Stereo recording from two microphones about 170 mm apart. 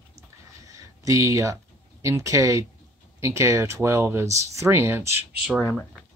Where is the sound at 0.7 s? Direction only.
20° right (ahead or behind).